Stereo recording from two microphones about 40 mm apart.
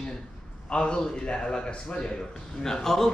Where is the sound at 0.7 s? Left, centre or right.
Left; by 3.1 s centre.